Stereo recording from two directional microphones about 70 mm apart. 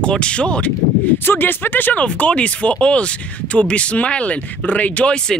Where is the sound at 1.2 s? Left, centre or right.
Left.